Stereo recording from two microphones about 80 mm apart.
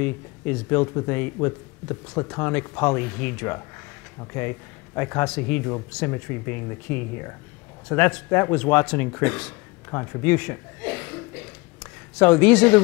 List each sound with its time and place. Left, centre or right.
0.0 s speech: centre
9.8 s speech: left
10.2 s a sound: left